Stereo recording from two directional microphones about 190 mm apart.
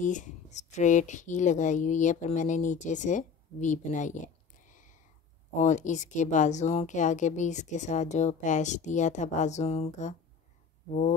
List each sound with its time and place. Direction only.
0.0 s speech: 40° left (ahead or behind)
4.6 s a sound: 40° left (ahead or behind)
5.5 s speech: 40° left (ahead or behind)